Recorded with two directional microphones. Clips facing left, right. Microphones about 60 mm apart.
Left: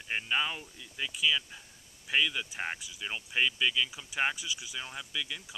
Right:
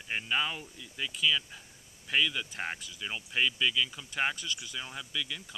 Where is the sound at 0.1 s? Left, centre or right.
Centre.